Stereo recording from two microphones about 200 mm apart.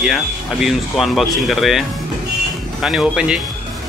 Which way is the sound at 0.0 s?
Centre (ahead or behind).